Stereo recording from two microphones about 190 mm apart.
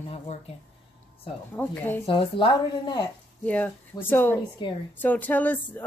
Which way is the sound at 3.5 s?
10° left (ahead or behind).